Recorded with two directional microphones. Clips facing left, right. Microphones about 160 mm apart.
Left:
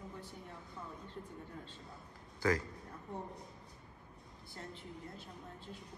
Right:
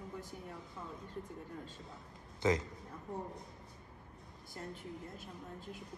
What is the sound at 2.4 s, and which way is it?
Speech, 20° right (ahead or behind).